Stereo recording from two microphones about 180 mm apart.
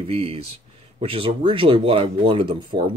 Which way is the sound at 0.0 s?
30° right (ahead or behind).